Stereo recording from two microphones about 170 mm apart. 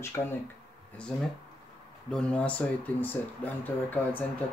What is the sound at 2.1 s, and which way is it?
Speech, 5° left (ahead or behind).